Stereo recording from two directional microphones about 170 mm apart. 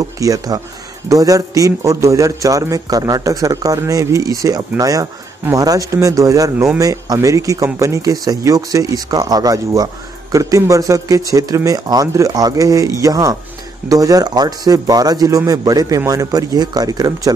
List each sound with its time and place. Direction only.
0.2 s a man's voice: 20° right (ahead or behind)